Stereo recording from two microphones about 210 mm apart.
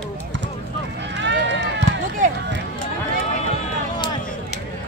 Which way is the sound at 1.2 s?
60° right (ahead or behind).